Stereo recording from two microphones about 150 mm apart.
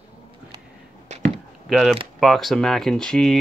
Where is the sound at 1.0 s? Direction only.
50° right (ahead or behind).